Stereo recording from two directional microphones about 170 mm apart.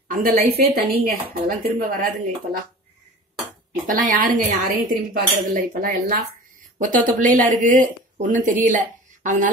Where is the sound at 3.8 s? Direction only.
50° right (ahead or behind).